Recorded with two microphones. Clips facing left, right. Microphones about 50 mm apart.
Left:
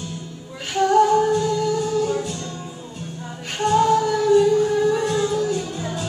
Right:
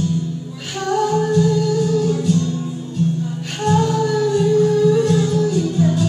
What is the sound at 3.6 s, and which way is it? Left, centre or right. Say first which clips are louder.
Music: left 1 dB; centre.